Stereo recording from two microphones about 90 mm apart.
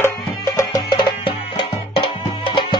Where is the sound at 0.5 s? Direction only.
50° left (ahead or behind); by 2.1 s 70° left (ahead or behind).